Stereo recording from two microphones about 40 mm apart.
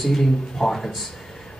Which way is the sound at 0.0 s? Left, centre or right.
Centre.